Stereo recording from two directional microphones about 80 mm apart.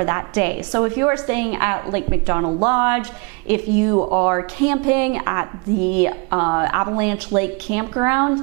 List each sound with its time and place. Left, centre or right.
0.3 s a woman's voice: centre